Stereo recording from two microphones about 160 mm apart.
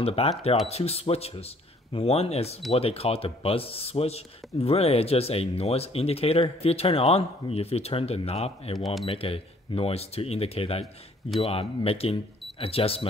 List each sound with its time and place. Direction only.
0.0 s speech: 35° left (ahead or behind)
8.7 s speech: centre (ahead or behind)
9.1 s speech: 35° left (ahead or behind)